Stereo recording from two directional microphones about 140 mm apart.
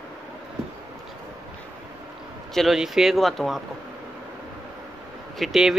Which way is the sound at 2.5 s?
Centre (ahead or behind).